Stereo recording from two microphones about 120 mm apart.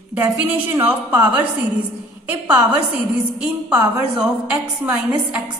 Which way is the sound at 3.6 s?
10° right (ahead or behind).